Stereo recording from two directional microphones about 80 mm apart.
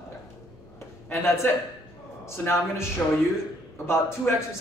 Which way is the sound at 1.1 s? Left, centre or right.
Left.